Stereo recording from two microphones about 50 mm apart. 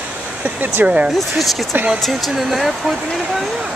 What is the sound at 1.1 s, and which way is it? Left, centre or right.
Speech, centre.